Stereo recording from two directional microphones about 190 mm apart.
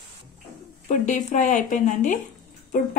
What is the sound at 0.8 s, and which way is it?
A woman's voice, 40° left (ahead or behind).